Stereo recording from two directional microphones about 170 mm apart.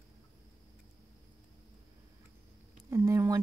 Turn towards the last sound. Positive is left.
turn(degrees=-20)  # may be behind; listen again after turning